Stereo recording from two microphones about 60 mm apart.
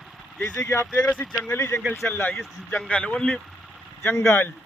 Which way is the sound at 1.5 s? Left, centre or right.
Left.